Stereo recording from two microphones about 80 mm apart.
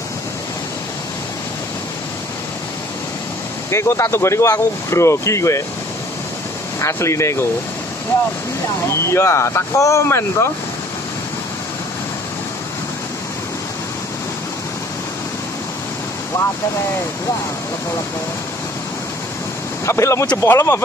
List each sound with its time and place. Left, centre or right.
3.7 s speech: left
6.8 s speech: left
8.8 s speech: left
19.9 s speech: left